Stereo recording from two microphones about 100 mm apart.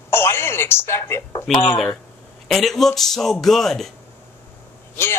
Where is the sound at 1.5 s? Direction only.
70° left (ahead or behind).